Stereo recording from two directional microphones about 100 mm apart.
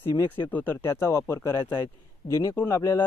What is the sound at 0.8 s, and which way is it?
Speech, 30° left (ahead or behind).